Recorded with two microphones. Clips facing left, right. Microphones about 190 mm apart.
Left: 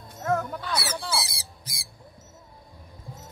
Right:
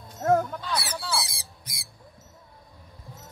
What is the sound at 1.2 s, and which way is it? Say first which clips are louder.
Squawk: left 1 dB; 25° left (ahead or behind).